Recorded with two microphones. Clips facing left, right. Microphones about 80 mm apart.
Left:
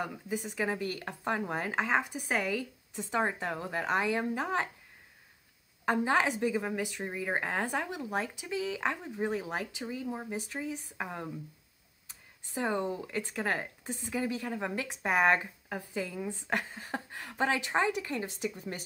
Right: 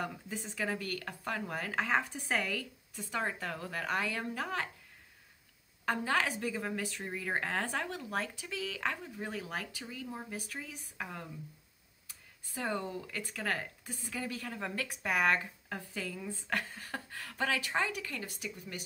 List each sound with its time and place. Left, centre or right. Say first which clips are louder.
0.0 s a woman's voice: left 4 dB; centre
5.9 s a woman's voice: left 4 dB; left